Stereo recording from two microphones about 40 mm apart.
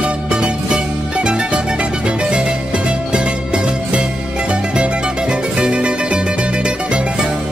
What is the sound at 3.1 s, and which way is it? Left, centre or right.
Music, right.